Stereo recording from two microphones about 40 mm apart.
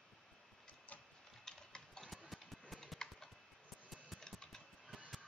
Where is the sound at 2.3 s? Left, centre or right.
Centre.